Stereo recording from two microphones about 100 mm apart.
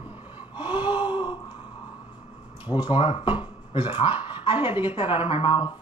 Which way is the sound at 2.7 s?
55° left (ahead or behind).